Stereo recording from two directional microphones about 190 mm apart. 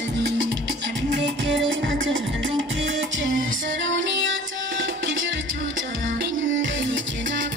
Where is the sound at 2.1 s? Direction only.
90° right.